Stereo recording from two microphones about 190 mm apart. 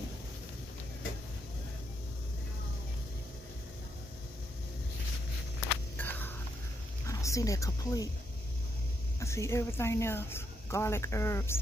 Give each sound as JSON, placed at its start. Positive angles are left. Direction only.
{"t": 5.9, "sound": "a sound", "side_deg": 10}
{"t": 7.1, "sound": "speech", "side_deg": 15}
{"t": 9.2, "sound": "speech", "side_deg": 15}